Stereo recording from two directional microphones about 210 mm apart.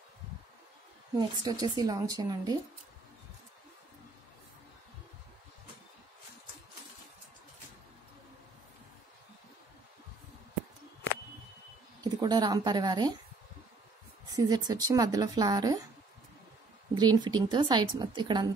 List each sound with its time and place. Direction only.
1.4 s speech: 20° right (ahead or behind)
12.0 s speech: 20° right (ahead or behind)
14.3 s speech: 15° right (ahead or behind)
16.9 s a woman's voice: 20° right (ahead or behind)